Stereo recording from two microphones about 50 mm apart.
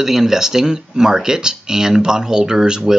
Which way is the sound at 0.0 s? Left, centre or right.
Centre.